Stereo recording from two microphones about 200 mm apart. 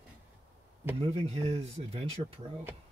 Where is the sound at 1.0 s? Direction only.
30° right (ahead or behind).